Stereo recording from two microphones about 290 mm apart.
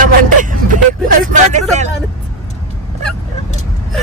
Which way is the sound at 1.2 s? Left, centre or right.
Right.